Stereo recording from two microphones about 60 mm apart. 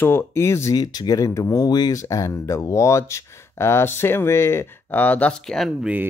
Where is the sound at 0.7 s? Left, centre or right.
Left.